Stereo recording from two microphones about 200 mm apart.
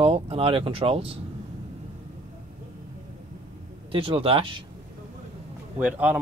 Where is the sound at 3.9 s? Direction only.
25° right (ahead or behind).